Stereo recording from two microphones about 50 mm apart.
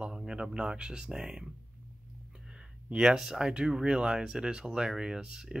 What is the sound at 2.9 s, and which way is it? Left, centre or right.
Speech, centre.